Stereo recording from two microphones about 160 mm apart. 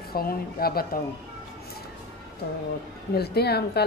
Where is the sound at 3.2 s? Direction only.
85° left.